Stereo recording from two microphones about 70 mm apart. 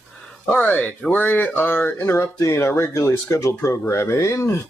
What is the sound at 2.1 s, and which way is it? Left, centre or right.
Speech, left.